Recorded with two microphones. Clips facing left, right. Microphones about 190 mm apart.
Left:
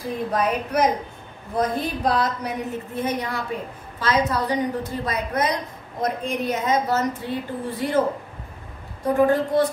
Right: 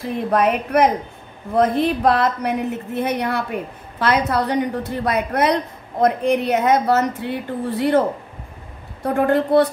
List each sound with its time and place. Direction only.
0.3 s a woman's voice: 65° right (ahead or behind)
9.0 s a woman's voice: 65° right (ahead or behind)